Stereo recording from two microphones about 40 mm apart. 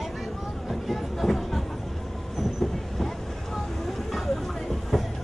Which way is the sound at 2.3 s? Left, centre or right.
Centre.